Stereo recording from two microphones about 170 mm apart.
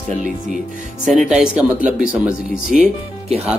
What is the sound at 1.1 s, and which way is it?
Speech, centre (ahead or behind).